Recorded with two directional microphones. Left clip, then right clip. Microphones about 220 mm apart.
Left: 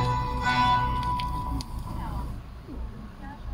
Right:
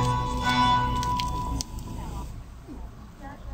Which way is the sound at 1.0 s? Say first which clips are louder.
Right 1 dB; 45° right (ahead or behind).